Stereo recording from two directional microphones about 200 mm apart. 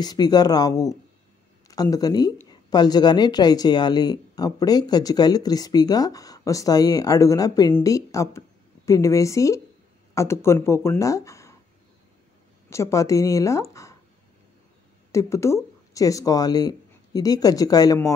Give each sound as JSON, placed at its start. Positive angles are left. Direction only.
{"t": 0.0, "sound": "speech", "side_deg": 20}
{"t": 12.6, "sound": "speech", "side_deg": 15}
{"t": 15.0, "sound": "speech", "side_deg": 15}